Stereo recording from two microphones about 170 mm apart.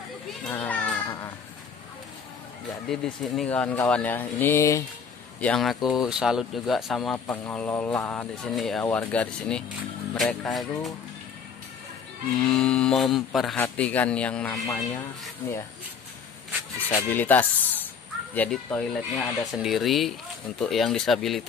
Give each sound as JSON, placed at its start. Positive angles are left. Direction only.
{"t": 0.4, "sound": "children playing", "side_deg": 10}
{"t": 2.9, "sound": "speech", "side_deg": 5}
{"t": 5.4, "sound": "speech", "side_deg": 5}
{"t": 12.4, "sound": "speech", "side_deg": 5}
{"t": 16.9, "sound": "speech", "side_deg": 10}
{"t": 19.6, "sound": "speech", "side_deg": 0}